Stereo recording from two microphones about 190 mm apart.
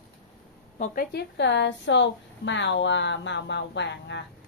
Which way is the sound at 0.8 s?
55° left (ahead or behind).